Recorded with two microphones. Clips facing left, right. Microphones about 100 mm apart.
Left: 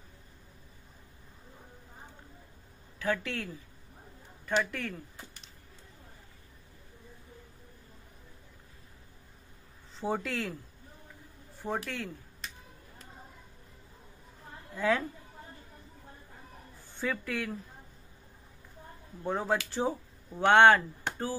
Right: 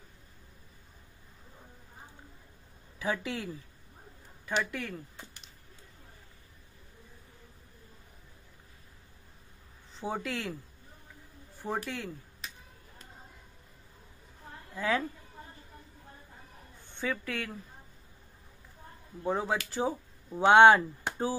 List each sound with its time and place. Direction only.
3.0 s speech: 15° right (ahead or behind)
4.5 s speech: centre (ahead or behind)
9.9 s speech: centre (ahead or behind)
11.5 s speech: centre (ahead or behind)
14.8 s speech: centre (ahead or behind)
16.8 s a man's voice: centre (ahead or behind)
19.2 s speech: centre (ahead or behind)
20.3 s speech: 15° right (ahead or behind)